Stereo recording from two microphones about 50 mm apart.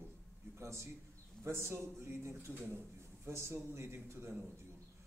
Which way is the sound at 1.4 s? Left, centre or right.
Right.